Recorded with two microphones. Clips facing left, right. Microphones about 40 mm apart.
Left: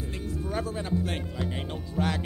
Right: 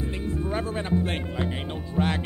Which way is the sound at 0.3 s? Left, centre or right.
Right.